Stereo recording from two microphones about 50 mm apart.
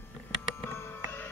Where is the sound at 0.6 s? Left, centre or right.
Left.